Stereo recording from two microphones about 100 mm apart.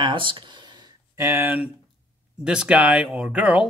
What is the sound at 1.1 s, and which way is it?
Speech, 25° right (ahead or behind).